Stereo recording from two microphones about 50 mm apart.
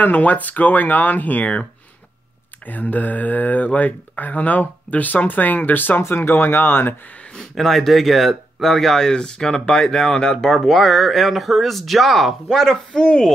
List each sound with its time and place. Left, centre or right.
0.0 s speech: left
2.6 s speech: left
7.3 s speech: centre